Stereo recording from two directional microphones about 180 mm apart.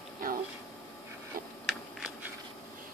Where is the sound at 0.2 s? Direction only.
50° right (ahead or behind).